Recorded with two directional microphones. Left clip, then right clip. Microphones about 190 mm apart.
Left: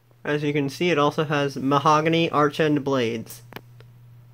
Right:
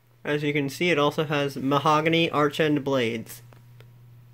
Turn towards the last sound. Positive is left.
turn(degrees=5)  # may be behind; listen again after turning